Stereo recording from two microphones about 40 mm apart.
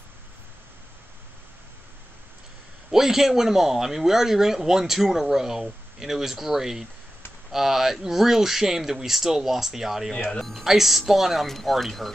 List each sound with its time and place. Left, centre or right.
2.9 s speech: centre
11.4 s speech: centre